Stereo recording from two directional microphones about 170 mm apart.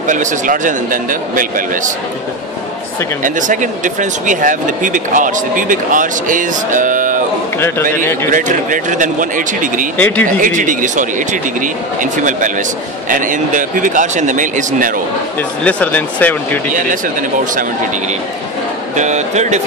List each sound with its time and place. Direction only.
0.1 s speech: 50° right (ahead or behind)
3.3 s speech: 50° right (ahead or behind)
7.5 s a man's voice: 15° left (ahead or behind)
8.3 s speech: 50° right (ahead or behind)
9.9 s speech: 10° left (ahead or behind)
10.2 s speech: 50° right (ahead or behind)
15.6 s speech: 10° left (ahead or behind)
18.9 s speech: 45° right (ahead or behind)